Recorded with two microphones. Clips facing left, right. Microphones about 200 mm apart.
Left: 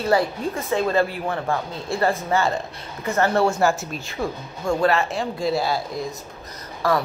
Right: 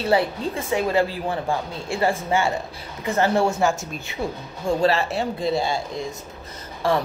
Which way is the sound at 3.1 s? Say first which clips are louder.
Left 1 dB; 25° right (ahead or behind).